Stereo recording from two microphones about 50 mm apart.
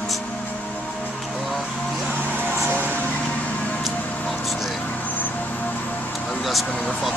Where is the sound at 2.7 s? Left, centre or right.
Left.